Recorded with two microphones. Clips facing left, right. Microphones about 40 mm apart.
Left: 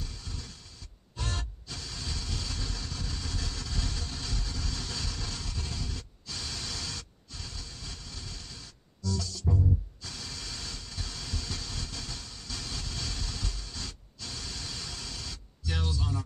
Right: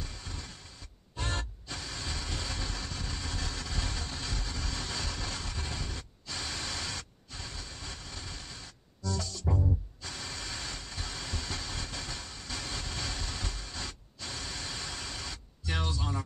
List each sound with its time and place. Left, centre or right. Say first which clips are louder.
0.0 s a sound: right 1 dB; right
1.1 s music: right 2 dB; right
10.0 s vehicle: right 2 dB; right